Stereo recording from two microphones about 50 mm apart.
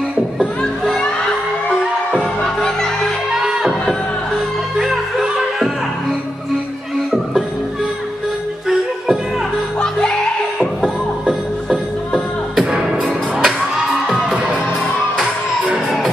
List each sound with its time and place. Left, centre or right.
0.6 s music: centre
2.4 s music: centre
4.7 s music: centre
8.6 s music: centre
9.8 s music: centre
10.6 s music: centre